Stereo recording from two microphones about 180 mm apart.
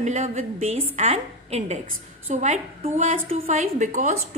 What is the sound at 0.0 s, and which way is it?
A woman's voice, 40° right (ahead or behind).